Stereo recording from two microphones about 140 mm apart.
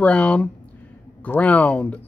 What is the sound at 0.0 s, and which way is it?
Speech, 10° left (ahead or behind).